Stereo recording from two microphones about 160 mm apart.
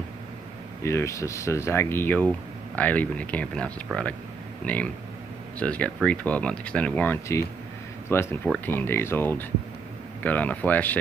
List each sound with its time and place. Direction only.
0.8 s speech: 20° left (ahead or behind)